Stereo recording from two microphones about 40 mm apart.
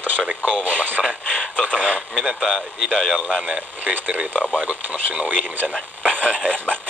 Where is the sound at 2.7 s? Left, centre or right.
Centre.